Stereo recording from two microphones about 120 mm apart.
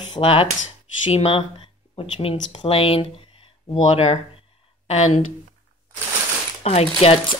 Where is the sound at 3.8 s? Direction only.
60° left (ahead or behind).